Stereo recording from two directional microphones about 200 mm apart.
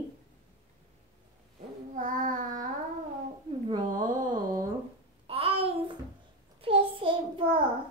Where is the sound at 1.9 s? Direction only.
40° right (ahead or behind).